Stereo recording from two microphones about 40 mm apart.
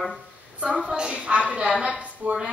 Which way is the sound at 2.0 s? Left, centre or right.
Right.